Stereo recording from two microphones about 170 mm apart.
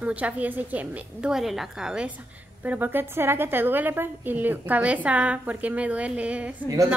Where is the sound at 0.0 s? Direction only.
10° right (ahead or behind).